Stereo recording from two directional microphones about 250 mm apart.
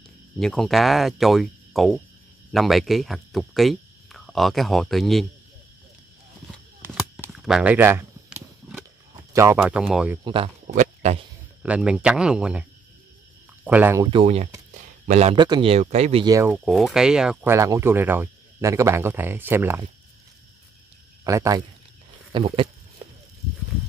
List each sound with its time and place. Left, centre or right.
0.4 s speech: centre
6.9 s a sound: centre
9.3 s speech: centre
10.2 s speech: right
11.6 s speech: centre
13.7 s speech: centre
14.1 s speech: right; by 19.9 s centre
21.2 s speech: centre